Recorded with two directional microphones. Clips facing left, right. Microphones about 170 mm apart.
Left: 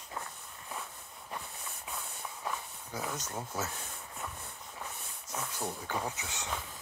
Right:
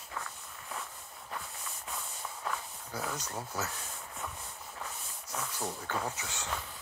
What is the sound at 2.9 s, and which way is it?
Speech, 20° left (ahead or behind).